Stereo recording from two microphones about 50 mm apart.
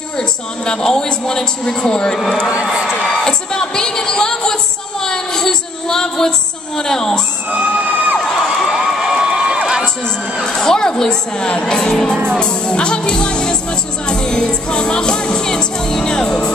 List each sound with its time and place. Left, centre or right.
0.2 s speech: centre
2.6 s speech: centre
3.0 s a sound: centre
5.0 s female singing: centre
6.8 s speech: centre
7.5 s bang: right
8.2 s crowd: centre
8.6 s a sound: centre
10.4 s speech: centre